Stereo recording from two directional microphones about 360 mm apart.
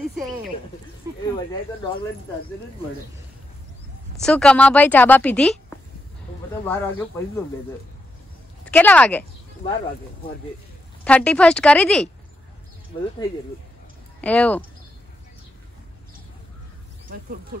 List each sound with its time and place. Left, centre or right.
4.2 s a woman's voice: centre
6.6 s speech: centre
8.6 s speech: centre
11.1 s a woman's voice: centre
14.2 s a woman's voice: centre
17.1 s speech: right